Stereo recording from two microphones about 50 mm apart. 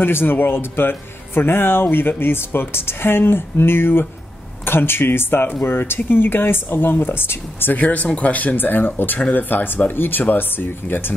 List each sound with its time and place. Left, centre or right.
0.0 s speech: left
7.7 s speech: left